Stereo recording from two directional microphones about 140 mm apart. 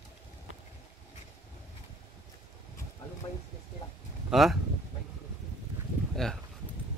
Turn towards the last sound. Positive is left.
turn(degrees=5)  # may be behind; listen again after turning